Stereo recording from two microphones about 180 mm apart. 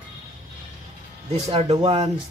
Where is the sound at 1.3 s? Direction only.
35° right (ahead or behind).